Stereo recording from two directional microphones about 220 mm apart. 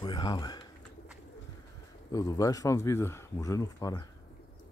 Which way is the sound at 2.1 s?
15° left (ahead or behind).